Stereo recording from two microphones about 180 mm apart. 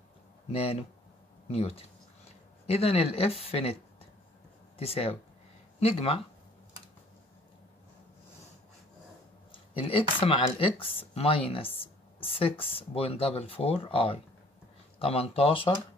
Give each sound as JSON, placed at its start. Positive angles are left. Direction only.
{"t": 0.5, "sound": "speech", "side_deg": 30}
{"t": 4.7, "sound": "speech", "side_deg": 35}
{"t": 9.5, "sound": "speech", "side_deg": 30}